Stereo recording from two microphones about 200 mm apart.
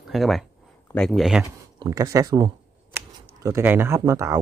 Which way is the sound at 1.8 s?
20° right (ahead or behind).